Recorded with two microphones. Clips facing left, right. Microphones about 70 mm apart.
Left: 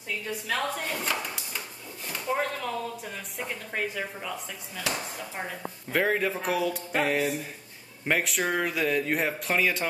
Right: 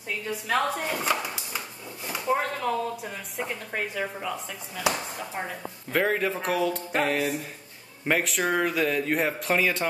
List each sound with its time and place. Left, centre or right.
0.5 s speech: centre
0.7 s speech: centre